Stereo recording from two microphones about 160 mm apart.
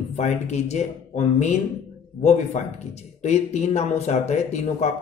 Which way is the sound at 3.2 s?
45° left (ahead or behind).